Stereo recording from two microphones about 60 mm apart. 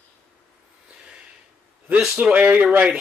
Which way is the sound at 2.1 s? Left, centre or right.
Right.